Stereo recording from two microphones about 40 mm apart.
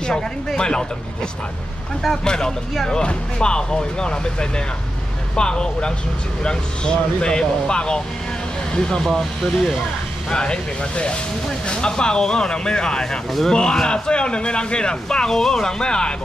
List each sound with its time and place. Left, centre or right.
0.6 s speech: left
2.2 s speech: centre
3.0 s speech: left
9.0 s speech: centre
10.3 s speech: left